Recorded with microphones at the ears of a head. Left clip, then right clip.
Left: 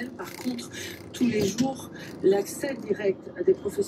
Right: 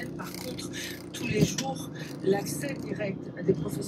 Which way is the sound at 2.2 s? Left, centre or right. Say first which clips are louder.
Left 5 dB; left.